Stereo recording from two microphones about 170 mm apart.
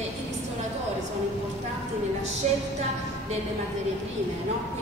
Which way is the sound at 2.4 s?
40° right (ahead or behind).